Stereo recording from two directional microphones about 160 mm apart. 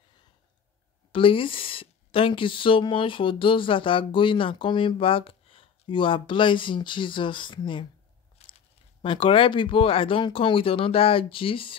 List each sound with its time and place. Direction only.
1.1 s speech: 35° left (ahead or behind)